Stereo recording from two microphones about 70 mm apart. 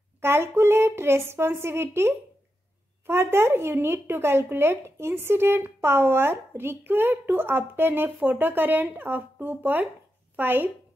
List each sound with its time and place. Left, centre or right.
0.2 s a woman's voice: right